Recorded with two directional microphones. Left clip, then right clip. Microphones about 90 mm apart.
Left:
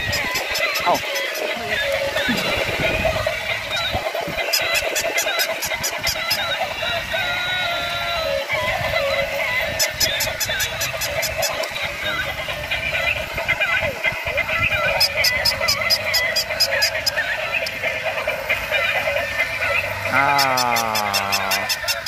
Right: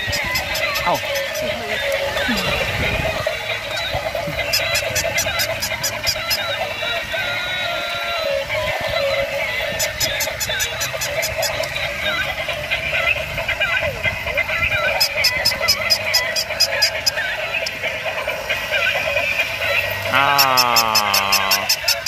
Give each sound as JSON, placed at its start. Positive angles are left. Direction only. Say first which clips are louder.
{"t": 13.5, "sound": "vehicle", "louder": "even", "side_deg": 40}
{"t": 15.6, "sound": "fowl", "louder": "right 1 dB", "side_deg": 85}
{"t": 20.1, "sound": "speech", "louder": "right 2 dB", "side_deg": 30}
{"t": 21.0, "sound": "a sound", "louder": "right 4 dB", "side_deg": 55}